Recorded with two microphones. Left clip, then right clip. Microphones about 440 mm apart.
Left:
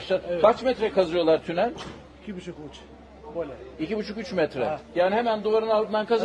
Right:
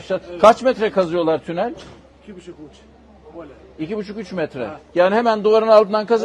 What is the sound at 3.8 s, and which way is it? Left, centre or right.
Speech, right.